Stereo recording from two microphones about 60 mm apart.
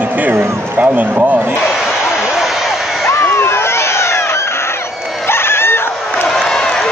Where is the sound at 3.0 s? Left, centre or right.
Left.